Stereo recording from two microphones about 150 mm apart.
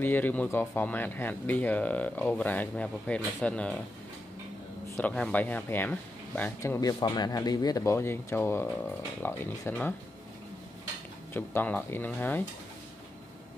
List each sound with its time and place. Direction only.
0.0 s speech: 10° left (ahead or behind)
4.8 s speech: 10° left (ahead or behind)
11.3 s speech: 10° left (ahead or behind)